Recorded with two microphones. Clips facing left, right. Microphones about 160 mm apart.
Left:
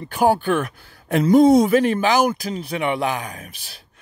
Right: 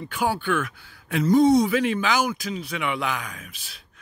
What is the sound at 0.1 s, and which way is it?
Speech, 40° left (ahead or behind).